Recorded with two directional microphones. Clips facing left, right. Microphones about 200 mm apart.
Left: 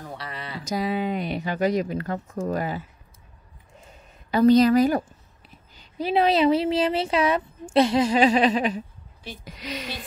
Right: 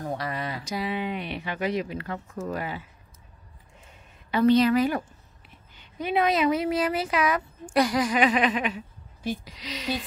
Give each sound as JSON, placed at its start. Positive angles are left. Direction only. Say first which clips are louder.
{"t": 0.1, "sound": "a sound", "louder": "right 5 dB", "side_deg": -45}
{"t": 0.7, "sound": "speech", "louder": "left 6 dB", "side_deg": 40}
{"t": 4.3, "sound": "speech", "louder": "left 3 dB", "side_deg": 40}
{"t": 9.4, "sound": "speech", "louder": "left 4 dB", "side_deg": 55}